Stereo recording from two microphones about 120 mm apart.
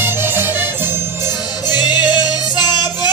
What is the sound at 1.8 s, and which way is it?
Music, 35° left (ahead or behind).